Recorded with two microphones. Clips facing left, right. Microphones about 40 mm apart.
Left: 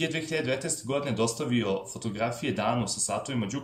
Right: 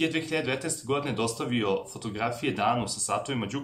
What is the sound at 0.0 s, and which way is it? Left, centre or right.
Speech, centre.